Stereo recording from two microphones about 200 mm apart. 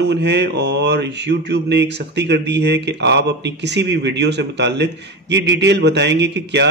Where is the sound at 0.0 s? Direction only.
60° right (ahead or behind).